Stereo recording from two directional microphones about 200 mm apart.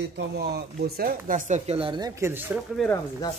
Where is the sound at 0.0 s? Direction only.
55° right (ahead or behind); by 2.6 s 10° right (ahead or behind).